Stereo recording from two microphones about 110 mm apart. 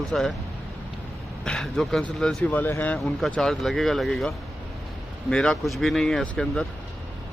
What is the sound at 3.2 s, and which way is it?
Speech, 5° left (ahead or behind).